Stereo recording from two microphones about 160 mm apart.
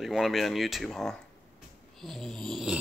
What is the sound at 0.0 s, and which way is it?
Speech, centre (ahead or behind).